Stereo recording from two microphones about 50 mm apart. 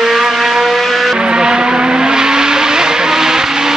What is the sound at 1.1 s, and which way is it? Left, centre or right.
Vehicle, centre.